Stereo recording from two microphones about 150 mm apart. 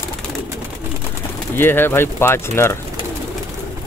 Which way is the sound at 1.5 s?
15° left (ahead or behind).